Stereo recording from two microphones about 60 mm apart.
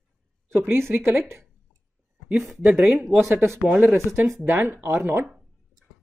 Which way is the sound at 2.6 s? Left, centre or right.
Right.